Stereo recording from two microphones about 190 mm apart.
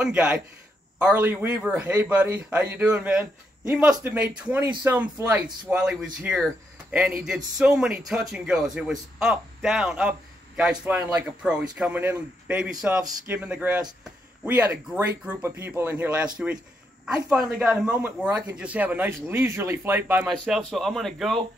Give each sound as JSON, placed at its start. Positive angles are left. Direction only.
{"t": 0.0, "sound": "a man's voice", "side_deg": -5}